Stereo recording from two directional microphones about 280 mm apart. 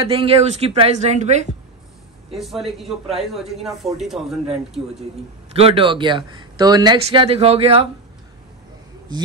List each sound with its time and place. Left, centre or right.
0.1 s a man's voice: centre
2.3 s a man's voice: centre
5.5 s a man's voice: right
9.1 s speech: centre